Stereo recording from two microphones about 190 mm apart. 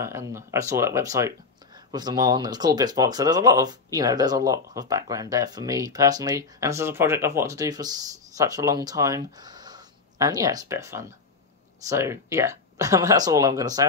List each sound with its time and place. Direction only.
0.0 s speech: 15° right (ahead or behind)